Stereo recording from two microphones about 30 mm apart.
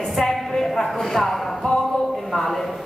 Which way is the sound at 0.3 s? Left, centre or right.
Centre.